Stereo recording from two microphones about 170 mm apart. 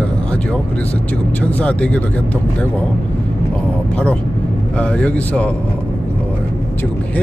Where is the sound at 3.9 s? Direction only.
5° left (ahead or behind).